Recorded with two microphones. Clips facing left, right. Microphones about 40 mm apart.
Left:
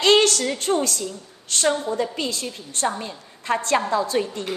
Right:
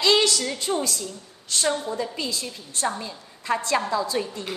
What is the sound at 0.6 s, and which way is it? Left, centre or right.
A woman's voice, left.